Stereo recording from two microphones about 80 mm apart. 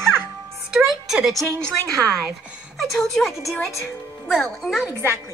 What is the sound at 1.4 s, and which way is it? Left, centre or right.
Speech, right.